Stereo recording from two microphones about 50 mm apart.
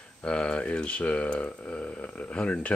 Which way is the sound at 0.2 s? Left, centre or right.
Left.